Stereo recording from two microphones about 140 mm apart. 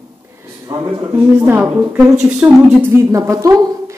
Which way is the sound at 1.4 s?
15° right (ahead or behind).